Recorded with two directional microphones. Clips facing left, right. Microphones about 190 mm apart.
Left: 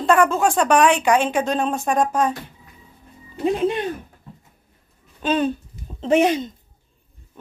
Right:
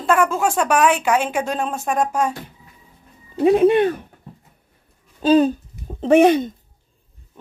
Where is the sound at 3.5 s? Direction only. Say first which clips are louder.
Right 7 dB; 65° right (ahead or behind).